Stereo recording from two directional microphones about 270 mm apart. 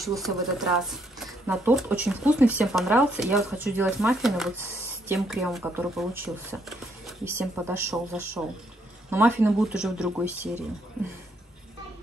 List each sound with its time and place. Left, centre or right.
0.2 s speech: centre